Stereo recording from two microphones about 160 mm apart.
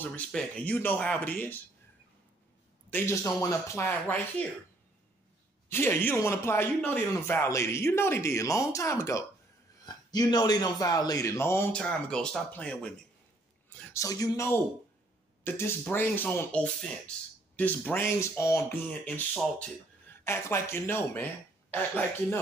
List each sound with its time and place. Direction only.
0.0 s a man's voice: 10° left (ahead or behind)
2.9 s a man's voice: 15° left (ahead or behind)
5.7 s a man's voice: 15° left (ahead or behind)
13.9 s a man's voice: 20° left (ahead or behind)
19.3 s speech: centre (ahead or behind)
20.2 s a man's voice: 15° left (ahead or behind)